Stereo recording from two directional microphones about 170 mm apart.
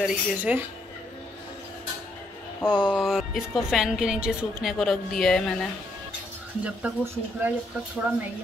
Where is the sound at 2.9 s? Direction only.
Centre (ahead or behind).